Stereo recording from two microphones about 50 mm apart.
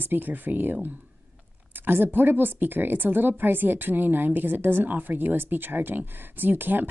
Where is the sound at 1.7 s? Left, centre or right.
Right.